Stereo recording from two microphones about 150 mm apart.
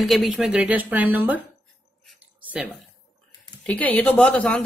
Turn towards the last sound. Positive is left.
turn(degrees=5)  # may be behind; listen again after turning